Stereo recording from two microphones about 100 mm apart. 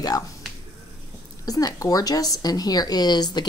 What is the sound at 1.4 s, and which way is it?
Speech, 35° left (ahead or behind).